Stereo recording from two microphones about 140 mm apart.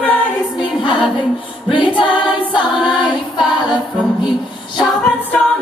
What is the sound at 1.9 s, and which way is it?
Choir, 35° left (ahead or behind).